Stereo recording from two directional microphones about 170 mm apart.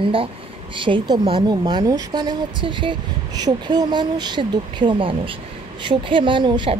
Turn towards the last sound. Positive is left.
turn(degrees=-30)  # may be behind; listen again after turning